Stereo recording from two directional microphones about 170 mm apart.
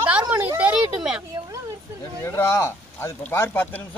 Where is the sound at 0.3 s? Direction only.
10° right (ahead or behind).